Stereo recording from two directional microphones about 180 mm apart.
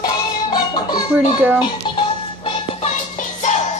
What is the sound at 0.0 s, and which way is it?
Music, 25° left (ahead or behind).